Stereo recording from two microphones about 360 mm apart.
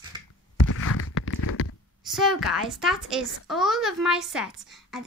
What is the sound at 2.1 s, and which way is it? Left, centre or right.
Speech, centre.